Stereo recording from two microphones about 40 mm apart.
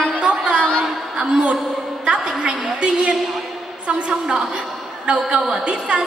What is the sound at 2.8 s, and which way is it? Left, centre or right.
A woman's voice, right.